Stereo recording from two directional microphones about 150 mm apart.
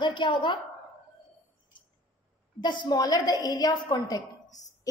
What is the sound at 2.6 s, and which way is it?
A woman's voice, 30° left (ahead or behind).